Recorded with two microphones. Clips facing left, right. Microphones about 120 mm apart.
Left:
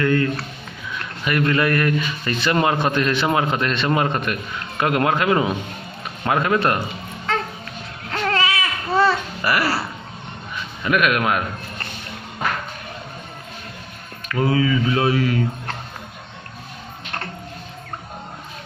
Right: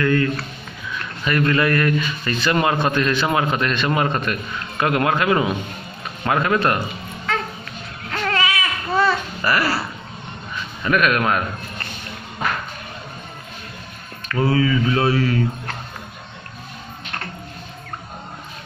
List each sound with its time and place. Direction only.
0.0 s a man's voice: 25° left (ahead or behind)
8.1 s baby cry: 25° left (ahead or behind)
9.4 s speech: 15° left (ahead or behind)
10.8 s speech: 10° left (ahead or behind)
14.3 s speech: 15° left (ahead or behind)